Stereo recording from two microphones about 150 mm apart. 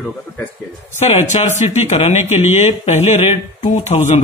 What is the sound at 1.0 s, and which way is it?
Speech, 45° left (ahead or behind).